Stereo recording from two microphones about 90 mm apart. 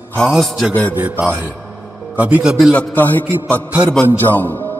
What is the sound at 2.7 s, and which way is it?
Speech, 15° left (ahead or behind).